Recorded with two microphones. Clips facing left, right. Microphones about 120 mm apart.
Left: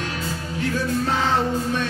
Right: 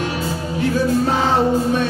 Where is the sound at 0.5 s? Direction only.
20° right (ahead or behind).